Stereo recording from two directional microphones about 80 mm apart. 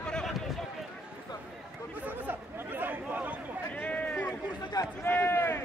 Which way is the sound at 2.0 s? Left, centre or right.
Right.